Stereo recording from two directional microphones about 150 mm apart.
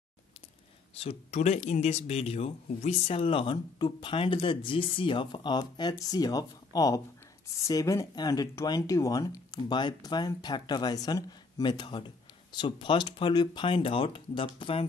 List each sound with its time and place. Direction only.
0.9 s speech: 45° left (ahead or behind)